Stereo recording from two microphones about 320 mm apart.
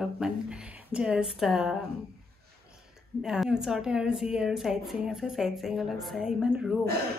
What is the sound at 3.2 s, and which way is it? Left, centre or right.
A woman's voice, centre.